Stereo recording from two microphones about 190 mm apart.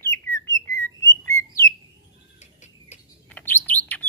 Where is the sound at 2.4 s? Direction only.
40° left (ahead or behind).